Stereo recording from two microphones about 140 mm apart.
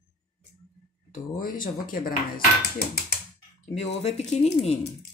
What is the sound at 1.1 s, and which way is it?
Speech, 80° left.